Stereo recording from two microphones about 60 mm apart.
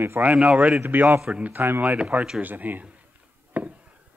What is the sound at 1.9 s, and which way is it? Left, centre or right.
Speech, centre.